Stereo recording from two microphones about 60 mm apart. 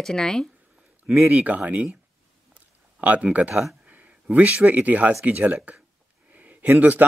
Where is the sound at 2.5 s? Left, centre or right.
Right.